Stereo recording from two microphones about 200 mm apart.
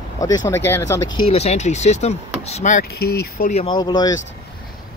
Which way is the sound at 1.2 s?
35° left (ahead or behind).